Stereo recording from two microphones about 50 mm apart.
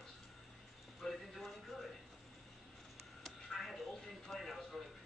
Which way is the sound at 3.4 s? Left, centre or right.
Centre.